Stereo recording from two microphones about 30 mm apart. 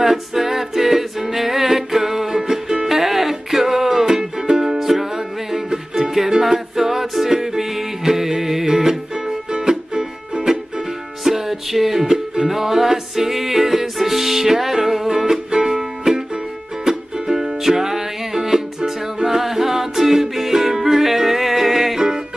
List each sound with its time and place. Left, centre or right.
0.0 s music: centre